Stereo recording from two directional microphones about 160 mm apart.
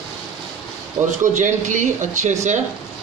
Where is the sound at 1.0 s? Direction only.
45° right (ahead or behind).